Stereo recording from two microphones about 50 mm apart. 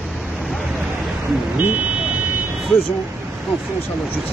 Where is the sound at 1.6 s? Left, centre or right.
Right.